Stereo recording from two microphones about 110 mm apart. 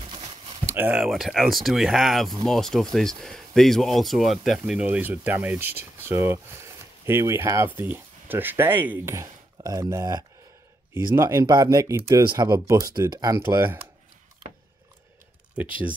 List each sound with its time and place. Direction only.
0.7 s speech: 15° right (ahead or behind)
1.0 s speech: centre (ahead or behind)
4.8 s speech: 15° right (ahead or behind)
12.2 s speech: 40° right (ahead or behind)